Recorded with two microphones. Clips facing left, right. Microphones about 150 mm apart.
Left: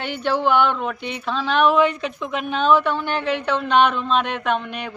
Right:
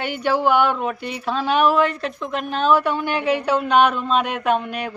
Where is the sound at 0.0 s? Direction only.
10° right (ahead or behind).